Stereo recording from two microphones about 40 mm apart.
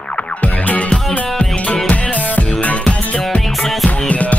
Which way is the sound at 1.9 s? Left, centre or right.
Left.